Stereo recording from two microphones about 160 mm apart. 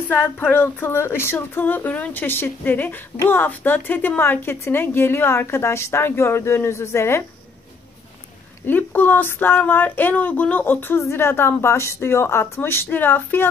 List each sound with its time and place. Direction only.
0.1 s speech: 10° left (ahead or behind)
8.6 s speech: 10° left (ahead or behind)